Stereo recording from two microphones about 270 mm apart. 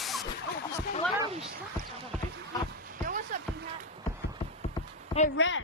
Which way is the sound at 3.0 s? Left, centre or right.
Right.